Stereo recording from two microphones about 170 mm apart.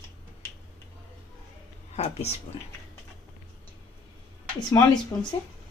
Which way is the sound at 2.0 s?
40° left (ahead or behind).